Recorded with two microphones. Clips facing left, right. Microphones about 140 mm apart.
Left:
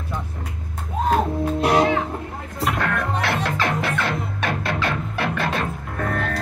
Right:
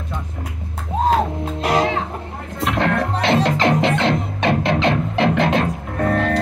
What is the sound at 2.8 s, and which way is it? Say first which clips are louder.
Music: right 8 dB; 25° right (ahead or behind).